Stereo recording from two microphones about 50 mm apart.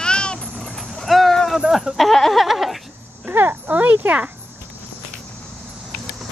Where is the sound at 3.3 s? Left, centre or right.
Right.